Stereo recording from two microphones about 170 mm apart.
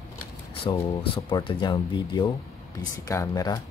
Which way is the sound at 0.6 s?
30° left (ahead or behind).